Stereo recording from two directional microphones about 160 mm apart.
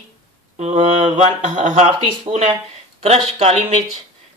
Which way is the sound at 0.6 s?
35° right (ahead or behind).